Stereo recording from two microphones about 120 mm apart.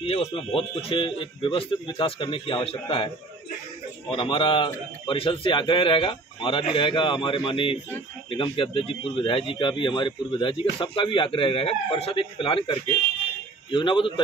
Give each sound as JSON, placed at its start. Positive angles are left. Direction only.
{"t": 0.0, "sound": "speech", "side_deg": 55}
{"t": 4.1, "sound": "speech", "side_deg": 45}